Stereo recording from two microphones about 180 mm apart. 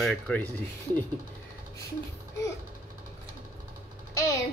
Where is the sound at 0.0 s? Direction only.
5° left (ahead or behind).